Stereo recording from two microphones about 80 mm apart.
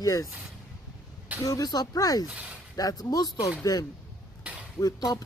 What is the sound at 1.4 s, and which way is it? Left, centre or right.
Speech, left.